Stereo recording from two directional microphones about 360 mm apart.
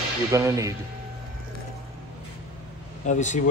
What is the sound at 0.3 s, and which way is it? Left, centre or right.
Speech, centre.